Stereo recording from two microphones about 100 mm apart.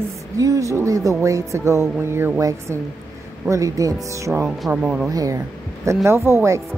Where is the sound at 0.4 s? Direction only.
35° right (ahead or behind).